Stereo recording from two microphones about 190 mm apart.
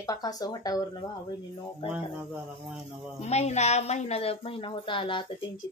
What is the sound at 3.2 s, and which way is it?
A woman's voice, 35° left (ahead or behind).